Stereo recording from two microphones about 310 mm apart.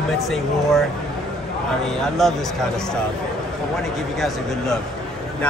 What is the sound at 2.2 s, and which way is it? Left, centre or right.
Speech, centre.